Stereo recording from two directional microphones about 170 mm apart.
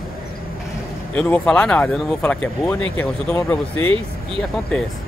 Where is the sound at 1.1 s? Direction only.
5° left (ahead or behind).